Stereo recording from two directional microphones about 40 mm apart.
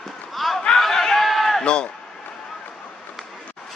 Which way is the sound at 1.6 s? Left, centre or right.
Left.